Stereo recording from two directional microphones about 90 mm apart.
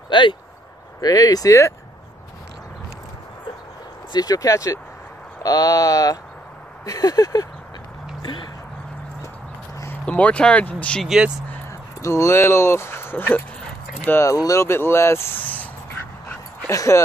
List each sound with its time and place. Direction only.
0.1 s speech: 60° left (ahead or behind)
1.0 s speech: 45° left (ahead or behind)
4.1 s speech: 45° left (ahead or behind)
8.2 s speech: 65° left (ahead or behind)
10.0 s speech: 15° left (ahead or behind)
11.0 s speech: 5° right (ahead or behind)
12.0 s speech: 30° left (ahead or behind)
14.2 s speech: 40° left (ahead or behind); by 15.7 s 20° left (ahead or behind)
16.7 s speech: 35° left (ahead or behind)